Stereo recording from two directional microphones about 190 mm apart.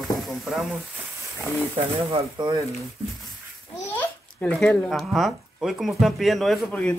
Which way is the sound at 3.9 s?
5° left (ahead or behind).